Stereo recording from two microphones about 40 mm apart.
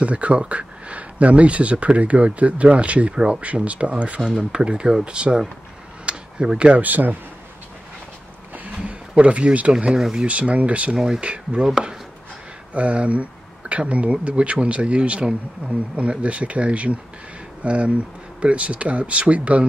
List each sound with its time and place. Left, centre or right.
0.0 s speech: right
3.5 s speech: right
6.0 s a sound: right
6.8 s speech: right
8.8 s speech: right
11.6 s speech: centre
12.7 s speech: right